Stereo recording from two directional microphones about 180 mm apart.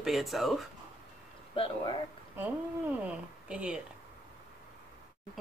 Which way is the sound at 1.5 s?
30° left (ahead or behind).